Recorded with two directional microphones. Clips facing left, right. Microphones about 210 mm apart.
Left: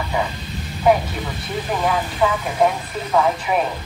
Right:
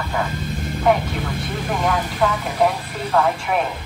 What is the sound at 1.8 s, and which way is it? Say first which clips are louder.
Speech: even; 5° left (ahead or behind).